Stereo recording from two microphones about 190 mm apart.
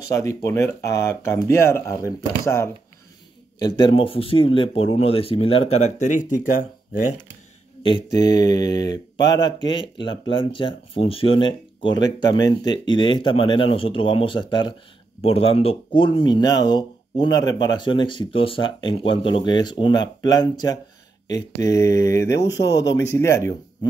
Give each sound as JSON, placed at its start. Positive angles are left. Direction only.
{"t": 0.1, "sound": "speech", "side_deg": 15}
{"t": 7.8, "sound": "speech", "side_deg": 20}
{"t": 22.5, "sound": "speech", "side_deg": 65}
{"t": 22.8, "sound": "speech", "side_deg": 15}